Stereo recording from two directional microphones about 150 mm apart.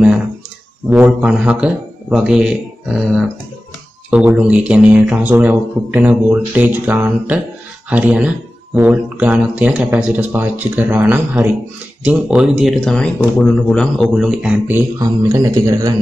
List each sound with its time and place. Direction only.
0.8 s speech: 10° right (ahead or behind)
4.1 s speech: 5° right (ahead or behind)
15.0 s speech: 20° right (ahead or behind)